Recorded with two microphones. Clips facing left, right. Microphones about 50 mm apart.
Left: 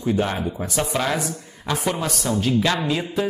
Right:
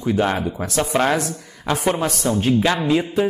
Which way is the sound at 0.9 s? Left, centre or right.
Right.